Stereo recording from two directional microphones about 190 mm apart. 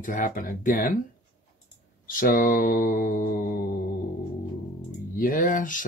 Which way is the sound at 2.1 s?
45° left (ahead or behind).